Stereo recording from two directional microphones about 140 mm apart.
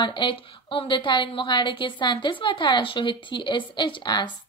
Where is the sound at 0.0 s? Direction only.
35° left (ahead or behind).